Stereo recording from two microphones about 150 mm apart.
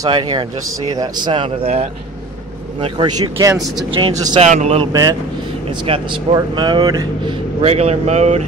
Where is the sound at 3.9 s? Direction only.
35° right (ahead or behind).